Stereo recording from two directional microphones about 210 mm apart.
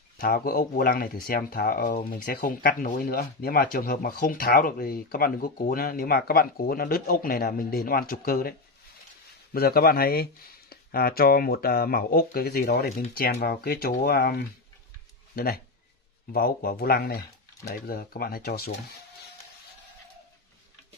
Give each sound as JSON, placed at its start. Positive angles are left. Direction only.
{"t": 0.2, "sound": "speech", "side_deg": 45}
{"t": 15.3, "sound": "speech", "side_deg": 45}